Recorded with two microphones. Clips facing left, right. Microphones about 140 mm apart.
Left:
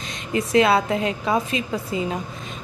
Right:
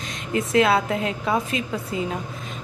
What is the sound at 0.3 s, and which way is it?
Speech, centre (ahead or behind).